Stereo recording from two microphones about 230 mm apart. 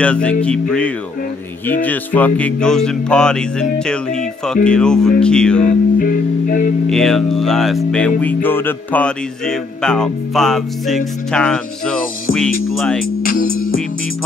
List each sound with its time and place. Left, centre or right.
0.0 s speech: centre
5.6 s music: left
6.9 s speech: centre
13.2 s music: left